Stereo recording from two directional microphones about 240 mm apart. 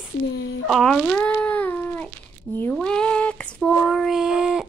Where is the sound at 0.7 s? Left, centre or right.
Centre.